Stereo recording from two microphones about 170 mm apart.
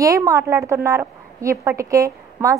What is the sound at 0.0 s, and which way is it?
A woman's voice, 20° right (ahead or behind).